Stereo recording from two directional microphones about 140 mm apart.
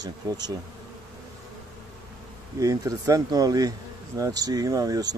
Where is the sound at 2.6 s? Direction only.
25° right (ahead or behind).